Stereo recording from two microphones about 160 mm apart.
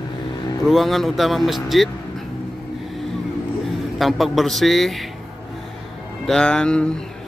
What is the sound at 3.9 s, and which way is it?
Speech, centre (ahead or behind).